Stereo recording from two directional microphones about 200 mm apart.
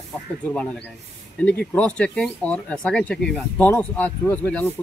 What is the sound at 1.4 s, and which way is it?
Speech, 5° left (ahead or behind).